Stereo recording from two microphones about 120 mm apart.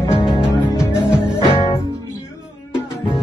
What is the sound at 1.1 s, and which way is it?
Music, 40° left (ahead or behind).